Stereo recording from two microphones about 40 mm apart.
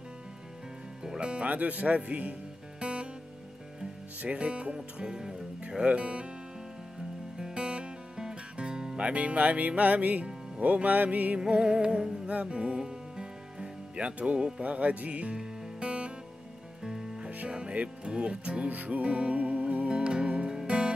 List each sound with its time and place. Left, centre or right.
1.0 s music: right
1.5 s music: right
4.2 s music: right
4.7 s speech: centre
5.7 s music: right
7.3 s music: centre
8.9 s music: right
11.3 s music: centre
12.4 s speech: right
15.3 s music: right
17.7 s speech: right